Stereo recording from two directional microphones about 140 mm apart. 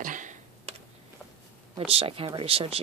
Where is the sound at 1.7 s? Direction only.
45° right (ahead or behind).